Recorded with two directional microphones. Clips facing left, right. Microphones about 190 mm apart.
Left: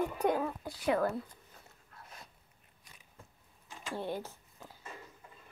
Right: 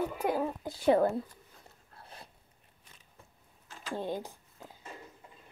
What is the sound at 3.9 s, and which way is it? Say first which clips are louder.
Speech: right 2 dB; 15° right (ahead or behind).